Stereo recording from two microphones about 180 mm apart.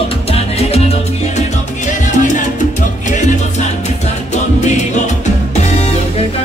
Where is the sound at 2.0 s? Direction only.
45° left (ahead or behind).